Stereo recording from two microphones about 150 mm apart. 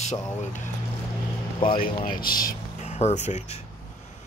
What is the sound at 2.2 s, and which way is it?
Speech, 70° left (ahead or behind).